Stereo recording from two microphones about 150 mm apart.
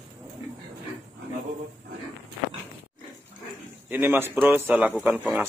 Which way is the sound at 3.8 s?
15° right (ahead or behind).